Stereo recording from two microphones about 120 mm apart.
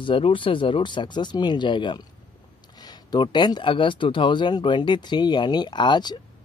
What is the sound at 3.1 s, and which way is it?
Speech, 35° left (ahead or behind).